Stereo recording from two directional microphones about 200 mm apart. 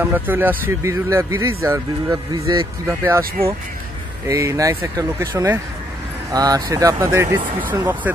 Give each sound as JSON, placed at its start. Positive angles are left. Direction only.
{"t": 0.0, "sound": "speech", "side_deg": -10}
{"t": 4.3, "sound": "speech", "side_deg": -15}